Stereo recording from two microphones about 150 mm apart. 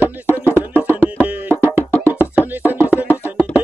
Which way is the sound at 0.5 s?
15° right (ahead or behind).